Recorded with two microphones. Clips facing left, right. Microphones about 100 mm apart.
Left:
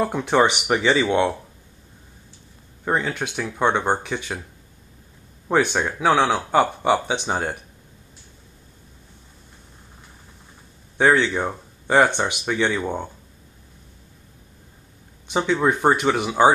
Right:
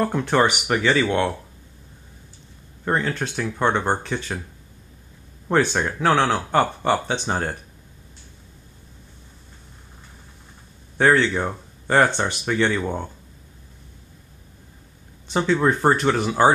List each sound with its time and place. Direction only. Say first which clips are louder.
0.0 s speech: left 1 dB; 10° left (ahead or behind)
2.8 s speech: even; 5° left (ahead or behind)
5.5 s speech: even; 10° left (ahead or behind)
11.0 s speech: even; 5° left (ahead or behind)
15.2 s speech: right 1 dB; 5° left (ahead or behind)